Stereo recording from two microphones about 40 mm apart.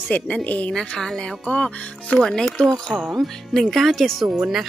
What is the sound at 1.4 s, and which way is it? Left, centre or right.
A woman's voice, left.